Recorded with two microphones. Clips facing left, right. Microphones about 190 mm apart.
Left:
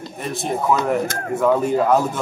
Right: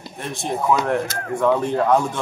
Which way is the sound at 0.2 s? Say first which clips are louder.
Left 1 dB; centre (ahead or behind).